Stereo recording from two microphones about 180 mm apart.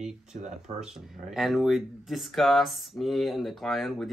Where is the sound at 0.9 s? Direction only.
Centre (ahead or behind).